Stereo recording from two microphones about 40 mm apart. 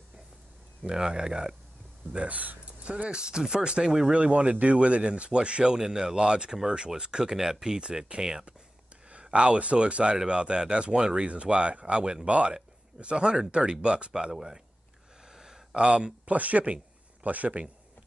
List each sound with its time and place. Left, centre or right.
0.8 s speech: centre
2.1 s speech: right; by 8.5 s centre
9.3 s speech: right; by 14.6 s centre
15.3 s a sound: centre
16.3 s speech: right